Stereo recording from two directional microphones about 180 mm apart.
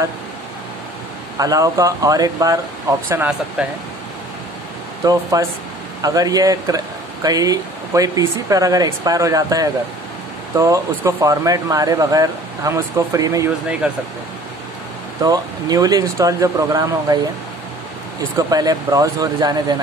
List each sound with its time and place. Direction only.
1.4 s speech: 20° right (ahead or behind)
3.1 s speech: 10° right (ahead or behind)
5.0 s speech: 20° right (ahead or behind)
13.8 s speech: 5° right (ahead or behind)
15.2 s speech: 20° right (ahead or behind)
18.5 s speech: 20° right (ahead or behind)